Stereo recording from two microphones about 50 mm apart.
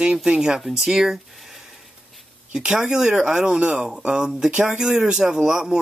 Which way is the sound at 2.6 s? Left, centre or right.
Centre.